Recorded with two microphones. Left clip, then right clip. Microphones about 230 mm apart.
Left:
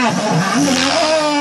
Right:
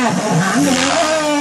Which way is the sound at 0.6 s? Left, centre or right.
Centre.